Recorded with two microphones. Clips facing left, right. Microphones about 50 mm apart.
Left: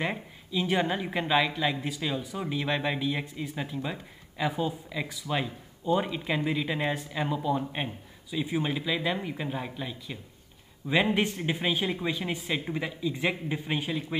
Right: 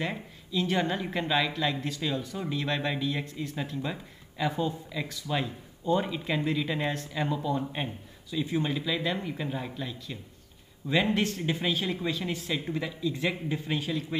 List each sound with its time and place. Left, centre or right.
0.0 s speech: centre